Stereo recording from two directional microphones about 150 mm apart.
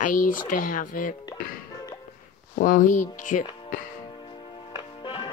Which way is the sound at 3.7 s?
70° left (ahead or behind).